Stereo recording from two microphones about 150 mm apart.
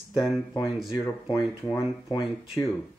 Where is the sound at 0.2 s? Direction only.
20° left (ahead or behind).